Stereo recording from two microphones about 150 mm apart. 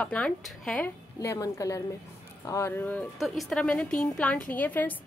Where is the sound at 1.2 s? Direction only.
20° left (ahead or behind).